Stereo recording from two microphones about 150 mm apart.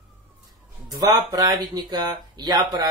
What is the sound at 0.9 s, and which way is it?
Speech, 25° right (ahead or behind).